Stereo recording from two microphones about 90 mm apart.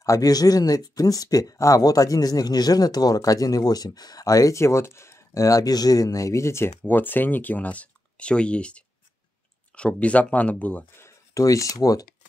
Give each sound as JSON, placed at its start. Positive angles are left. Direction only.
{"t": 0.0, "sound": "speech", "side_deg": 40}
{"t": 6.8, "sound": "speech", "side_deg": 20}
{"t": 11.0, "sound": "speech", "side_deg": 35}